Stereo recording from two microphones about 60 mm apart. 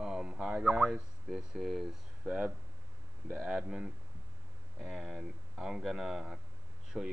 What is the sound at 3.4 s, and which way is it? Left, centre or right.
Speech, centre.